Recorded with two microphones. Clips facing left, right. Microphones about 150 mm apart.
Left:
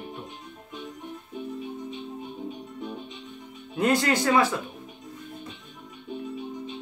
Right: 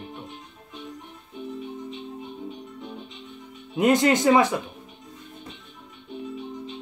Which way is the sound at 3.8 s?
20° right (ahead or behind).